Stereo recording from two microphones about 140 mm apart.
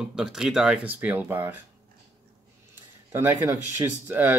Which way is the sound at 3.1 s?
20° right (ahead or behind).